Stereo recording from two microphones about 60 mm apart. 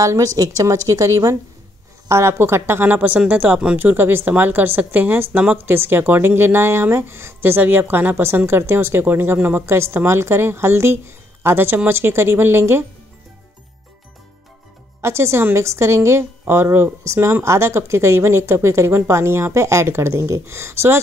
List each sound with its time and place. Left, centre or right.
0.0 s a woman's voice: right
2.0 s speech: right
2.9 s speech: right
3.7 s speech: right
9.7 s speech: right
15.0 s speech: right